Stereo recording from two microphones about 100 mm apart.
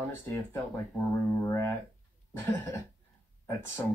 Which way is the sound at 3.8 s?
35° left (ahead or behind).